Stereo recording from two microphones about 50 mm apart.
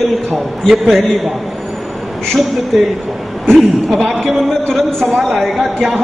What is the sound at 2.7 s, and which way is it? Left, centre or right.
A woman's voice, centre.